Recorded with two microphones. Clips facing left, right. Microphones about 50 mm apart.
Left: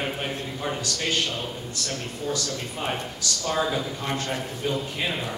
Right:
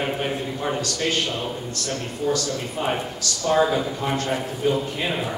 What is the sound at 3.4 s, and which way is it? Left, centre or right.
A man's voice, centre.